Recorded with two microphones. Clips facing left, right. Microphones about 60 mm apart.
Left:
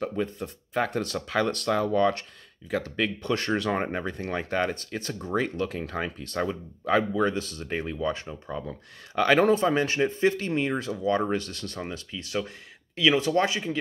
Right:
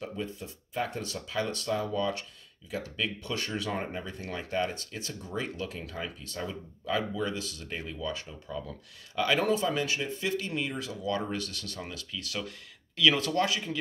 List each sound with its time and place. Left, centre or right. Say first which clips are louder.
0.0 s speech: left 7 dB; left
9.1 s speech: left 6 dB; left